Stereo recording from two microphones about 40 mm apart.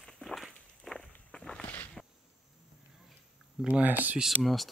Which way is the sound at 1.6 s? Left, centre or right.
Left.